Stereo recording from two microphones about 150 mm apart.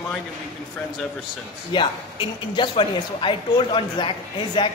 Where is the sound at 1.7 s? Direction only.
35° left (ahead or behind).